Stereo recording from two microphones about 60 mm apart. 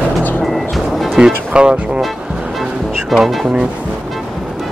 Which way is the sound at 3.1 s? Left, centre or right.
Centre.